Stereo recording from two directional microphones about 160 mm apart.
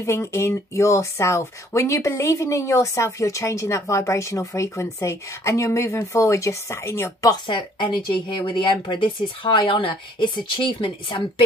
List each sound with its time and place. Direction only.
0.0 s speech: 15° left (ahead or behind)